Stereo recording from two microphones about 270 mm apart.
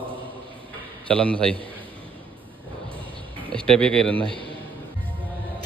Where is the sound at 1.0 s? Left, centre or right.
Centre.